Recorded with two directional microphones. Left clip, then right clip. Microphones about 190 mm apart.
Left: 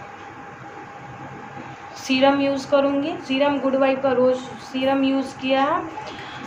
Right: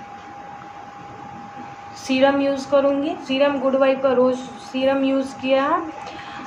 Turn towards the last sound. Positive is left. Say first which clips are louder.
# right 1 dB
turn(degrees=-10)  # may be behind; listen again after turning